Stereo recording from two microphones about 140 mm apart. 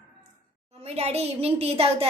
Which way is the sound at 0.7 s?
50° right (ahead or behind).